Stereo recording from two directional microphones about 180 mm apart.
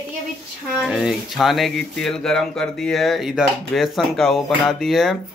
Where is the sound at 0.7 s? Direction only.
Centre (ahead or behind).